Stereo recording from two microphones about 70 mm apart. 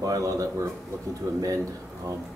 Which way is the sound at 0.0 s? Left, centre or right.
Right.